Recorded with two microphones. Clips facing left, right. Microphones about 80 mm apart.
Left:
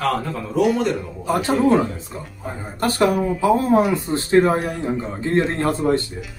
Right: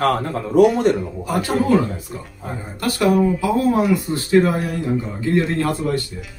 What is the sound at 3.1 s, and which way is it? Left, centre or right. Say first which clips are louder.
Speech: right 4 dB; centre.